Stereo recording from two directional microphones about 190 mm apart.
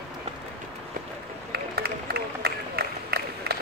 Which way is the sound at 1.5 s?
55° right (ahead or behind).